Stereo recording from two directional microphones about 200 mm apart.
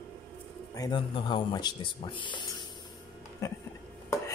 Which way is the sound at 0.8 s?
20° left (ahead or behind).